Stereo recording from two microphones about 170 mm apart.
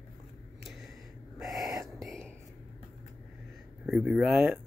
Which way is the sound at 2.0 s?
Centre (ahead or behind).